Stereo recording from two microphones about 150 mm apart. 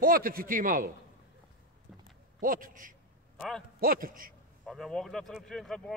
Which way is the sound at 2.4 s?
65° right (ahead or behind).